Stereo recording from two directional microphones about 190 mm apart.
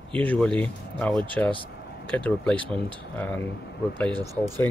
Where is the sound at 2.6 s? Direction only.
25° right (ahead or behind).